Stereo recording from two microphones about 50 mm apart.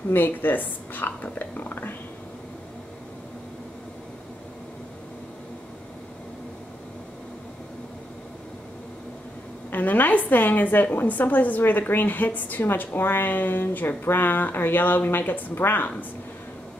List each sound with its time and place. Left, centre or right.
0.1 s speech: left
9.7 s speech: left
12.6 s speech: left